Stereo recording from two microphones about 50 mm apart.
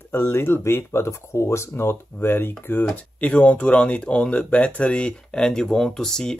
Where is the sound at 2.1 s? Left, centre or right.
Left.